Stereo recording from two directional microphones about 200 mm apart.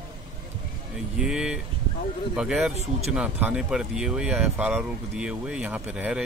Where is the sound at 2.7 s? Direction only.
30° right (ahead or behind).